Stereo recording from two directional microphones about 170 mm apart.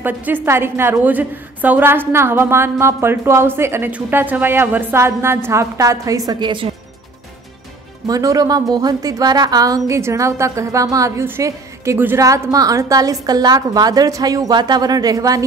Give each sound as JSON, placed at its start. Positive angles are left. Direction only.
{"t": 0.0, "sound": "a woman's voice", "side_deg": -10}
{"t": 8.1, "sound": "a woman's voice", "side_deg": -20}